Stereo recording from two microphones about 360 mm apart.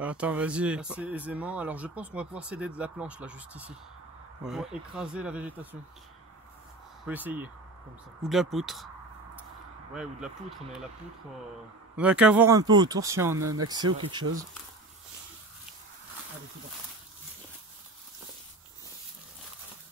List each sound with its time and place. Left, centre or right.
0.0 s speech: centre
7.1 s speech: centre
9.9 s speech: centre
12.0 s speech: centre
13.4 s speech: right
13.7 s speech: centre